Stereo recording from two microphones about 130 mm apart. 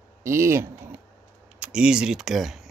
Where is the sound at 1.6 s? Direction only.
10° right (ahead or behind).